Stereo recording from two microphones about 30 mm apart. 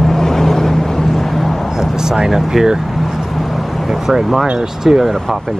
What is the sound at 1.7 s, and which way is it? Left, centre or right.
Vehicle, centre.